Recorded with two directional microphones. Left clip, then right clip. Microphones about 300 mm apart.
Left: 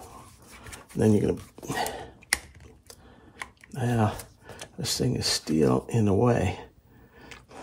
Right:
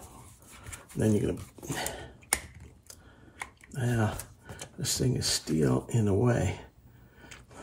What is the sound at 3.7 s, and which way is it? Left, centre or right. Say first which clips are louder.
Speech: left 4 dB; left.